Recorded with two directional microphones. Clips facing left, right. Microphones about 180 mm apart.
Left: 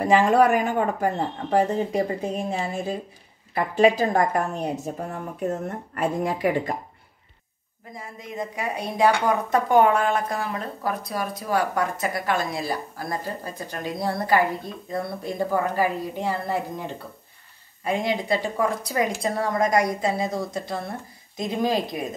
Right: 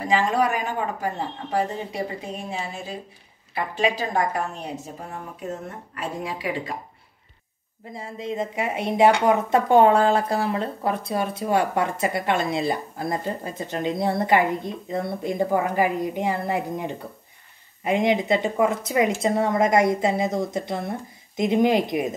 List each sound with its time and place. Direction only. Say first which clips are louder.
0.0 s speech: left 4 dB; 55° left (ahead or behind)
5.9 s speech: left 6 dB; 50° left (ahead or behind)
7.9 s speech: right 6 dB; 30° right (ahead or behind)